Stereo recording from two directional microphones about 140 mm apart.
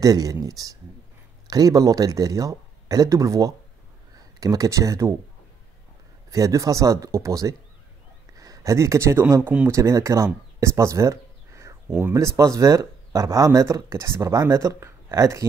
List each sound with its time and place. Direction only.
0.0 s speech: 25° right (ahead or behind)
6.3 s speech: 25° right (ahead or behind)